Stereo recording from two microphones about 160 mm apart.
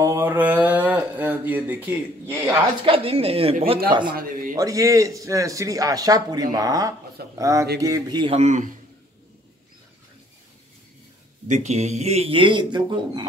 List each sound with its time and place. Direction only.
0.0 s a sound: 15° right (ahead or behind)
2.8 s speech: 35° right (ahead or behind)
4.1 s speech: 65° right (ahead or behind)
4.6 s a man's voice: 20° right (ahead or behind)
8.3 s speech: 45° right (ahead or behind)
11.4 s a man's voice: 45° right (ahead or behind); by 13.2 s 30° right (ahead or behind)